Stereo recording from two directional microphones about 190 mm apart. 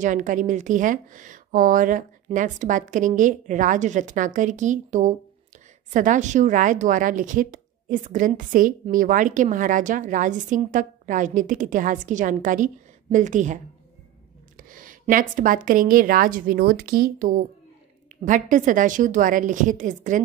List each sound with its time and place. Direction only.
0.0 s speech: 45° right (ahead or behind)
14.6 s speech: 45° right (ahead or behind)